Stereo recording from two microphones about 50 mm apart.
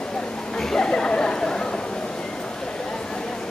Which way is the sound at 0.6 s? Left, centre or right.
Centre.